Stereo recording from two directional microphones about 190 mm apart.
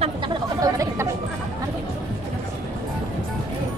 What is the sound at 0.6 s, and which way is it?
Chatter, 15° right (ahead or behind).